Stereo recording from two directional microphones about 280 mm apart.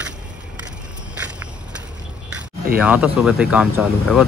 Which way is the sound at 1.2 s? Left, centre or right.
Centre.